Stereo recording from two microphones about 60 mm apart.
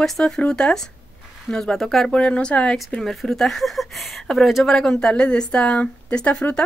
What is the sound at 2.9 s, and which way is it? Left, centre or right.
Speech, centre.